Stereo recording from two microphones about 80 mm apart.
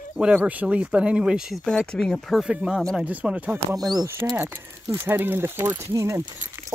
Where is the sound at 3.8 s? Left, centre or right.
Right.